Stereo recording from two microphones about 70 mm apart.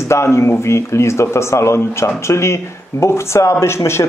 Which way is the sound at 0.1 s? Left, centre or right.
Left.